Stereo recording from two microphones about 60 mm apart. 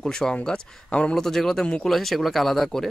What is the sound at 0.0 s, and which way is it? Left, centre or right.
Speech, centre.